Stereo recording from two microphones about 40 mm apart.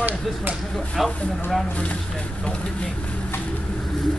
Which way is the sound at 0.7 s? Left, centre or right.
Centre.